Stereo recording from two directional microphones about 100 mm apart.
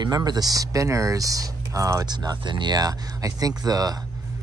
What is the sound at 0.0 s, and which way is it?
Speech, 45° right (ahead or behind).